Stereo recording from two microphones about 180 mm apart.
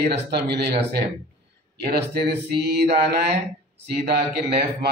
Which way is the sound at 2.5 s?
65° right (ahead or behind).